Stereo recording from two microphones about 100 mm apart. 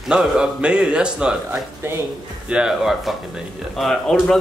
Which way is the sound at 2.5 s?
5° right (ahead or behind).